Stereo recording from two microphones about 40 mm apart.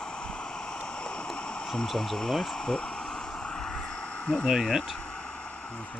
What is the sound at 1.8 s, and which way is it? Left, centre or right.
Speech, centre.